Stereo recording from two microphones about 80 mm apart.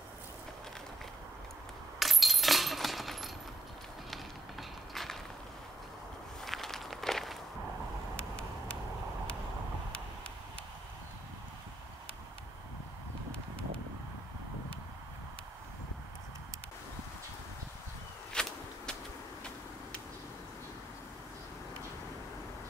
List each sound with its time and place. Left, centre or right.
2.0 s keys jangling: centre
4.1 s a sound: centre
6.4 s walk: centre
8.2 s vehicle: centre
18.3 s walk: centre